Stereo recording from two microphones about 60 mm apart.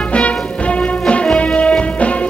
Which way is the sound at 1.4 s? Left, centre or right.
Left.